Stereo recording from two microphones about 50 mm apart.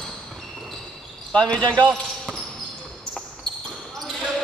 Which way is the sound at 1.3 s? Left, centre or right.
Centre.